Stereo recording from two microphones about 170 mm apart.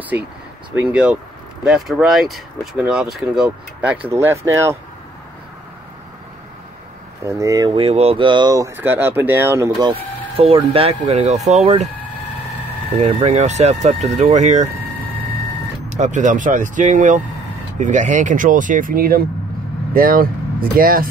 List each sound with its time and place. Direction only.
0.7 s speech: 10° right (ahead or behind)
7.2 s speech: 20° right (ahead or behind)
7.8 s speech: 35° right (ahead or behind)
12.9 s speech: 40° right (ahead or behind)
15.9 s speech: 45° right (ahead or behind)